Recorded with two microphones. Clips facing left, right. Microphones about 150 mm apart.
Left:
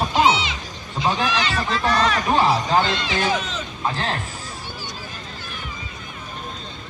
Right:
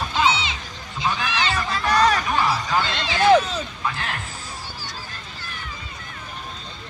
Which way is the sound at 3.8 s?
30° left (ahead or behind).